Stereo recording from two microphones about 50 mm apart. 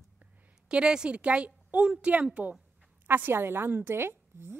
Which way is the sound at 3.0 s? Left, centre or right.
Right.